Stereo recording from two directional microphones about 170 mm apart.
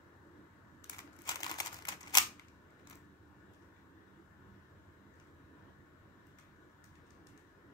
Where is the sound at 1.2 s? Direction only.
25° left (ahead or behind).